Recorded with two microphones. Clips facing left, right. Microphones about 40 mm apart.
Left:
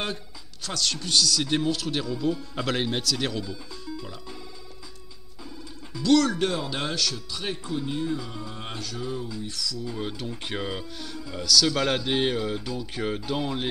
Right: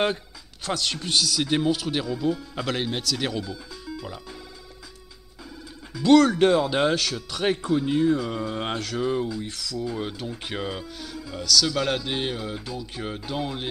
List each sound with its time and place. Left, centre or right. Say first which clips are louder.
0.7 s speech: right 2 dB; right
6.0 s speech: right 5 dB; right
7.2 s a man's voice: right 8 dB; right
7.9 s speech: right 8 dB; right
8.3 s speech: right 8 dB; right
9.0 s speech: right 7 dB; right
9.8 s speech: right 2 dB; centre